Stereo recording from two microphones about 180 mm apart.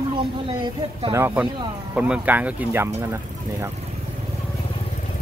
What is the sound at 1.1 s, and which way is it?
Speech, 10° right (ahead or behind).